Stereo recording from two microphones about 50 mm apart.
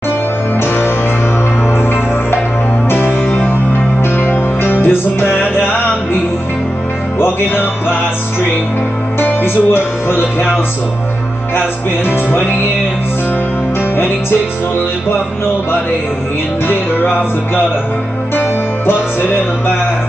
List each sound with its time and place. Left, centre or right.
0.6 s music: left
2.9 s music: left
7.2 s music: left
9.2 s music: left
12.1 s music: left
18.3 s music: left